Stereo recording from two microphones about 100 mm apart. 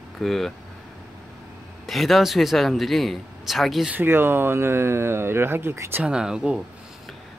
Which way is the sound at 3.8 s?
20° right (ahead or behind).